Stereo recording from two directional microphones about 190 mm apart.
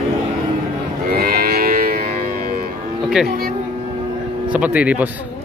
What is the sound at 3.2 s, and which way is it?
Speech, 50° right (ahead or behind).